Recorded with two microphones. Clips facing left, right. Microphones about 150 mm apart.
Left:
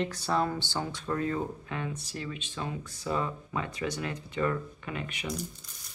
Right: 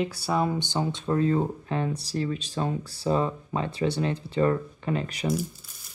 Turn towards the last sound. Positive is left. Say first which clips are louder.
# right 8 dB
turn(degrees=-35)  # may be behind; listen again after turning